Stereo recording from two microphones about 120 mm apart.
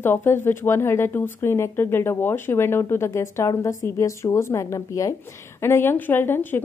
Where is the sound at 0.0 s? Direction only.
20° left (ahead or behind).